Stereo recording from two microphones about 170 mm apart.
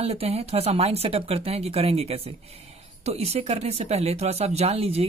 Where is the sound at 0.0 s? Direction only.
35° right (ahead or behind).